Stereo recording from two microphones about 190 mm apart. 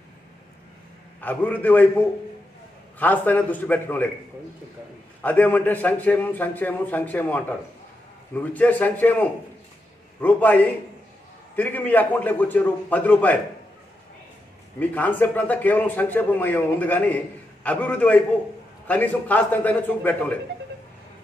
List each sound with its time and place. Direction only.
1.2 s a man's voice: 10° left (ahead or behind)
5.2 s a man's voice: 10° left (ahead or behind)
14.8 s a man's voice: 10° left (ahead or behind)